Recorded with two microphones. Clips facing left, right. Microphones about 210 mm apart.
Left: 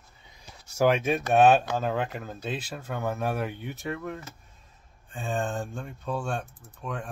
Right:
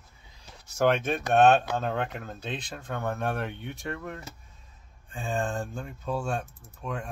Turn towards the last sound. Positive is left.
turn(degrees=0)  # may be behind; listen again after turning